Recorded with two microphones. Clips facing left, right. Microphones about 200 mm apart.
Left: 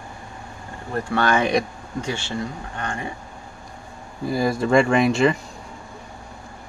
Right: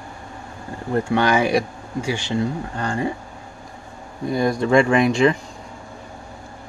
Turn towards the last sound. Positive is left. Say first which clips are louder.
# right 1 dB
turn(degrees=0)  # may be behind; listen again after turning